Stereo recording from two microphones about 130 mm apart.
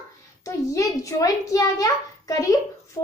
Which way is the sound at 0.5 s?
25° left (ahead or behind).